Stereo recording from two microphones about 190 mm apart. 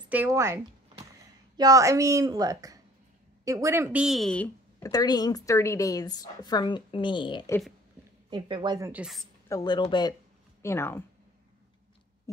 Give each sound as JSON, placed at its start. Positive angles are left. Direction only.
{"t": 0.1, "sound": "speech", "side_deg": -10}
{"t": 1.6, "sound": "a woman's voice", "side_deg": -15}
{"t": 8.3, "sound": "speech", "side_deg": -25}
{"t": 9.5, "sound": "a woman's voice", "side_deg": 20}